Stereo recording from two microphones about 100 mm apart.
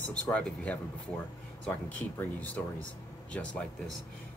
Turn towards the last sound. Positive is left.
turn(degrees=10)  # may be behind; listen again after turning